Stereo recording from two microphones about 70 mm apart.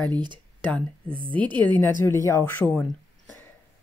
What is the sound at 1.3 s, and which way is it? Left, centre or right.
Speech, left.